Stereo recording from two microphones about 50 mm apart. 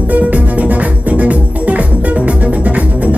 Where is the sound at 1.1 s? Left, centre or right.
Right.